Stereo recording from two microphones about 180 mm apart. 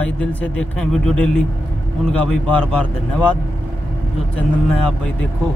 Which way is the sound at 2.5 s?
5° left (ahead or behind).